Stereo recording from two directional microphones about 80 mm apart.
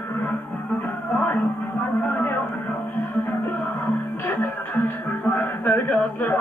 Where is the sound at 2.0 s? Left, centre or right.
Left.